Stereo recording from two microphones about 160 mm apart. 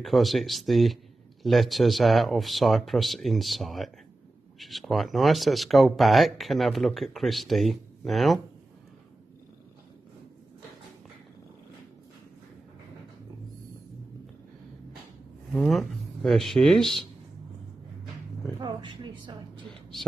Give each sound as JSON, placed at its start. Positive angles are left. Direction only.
{"t": 0.0, "sound": "speech", "side_deg": 0}
{"t": 15.5, "sound": "speech", "side_deg": 0}
{"t": 18.6, "sound": "a woman's voice", "side_deg": -30}